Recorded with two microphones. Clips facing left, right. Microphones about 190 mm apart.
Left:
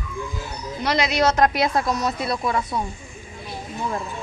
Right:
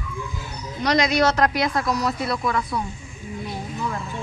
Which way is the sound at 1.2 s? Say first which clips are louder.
Left 1 dB; 20° left (ahead or behind).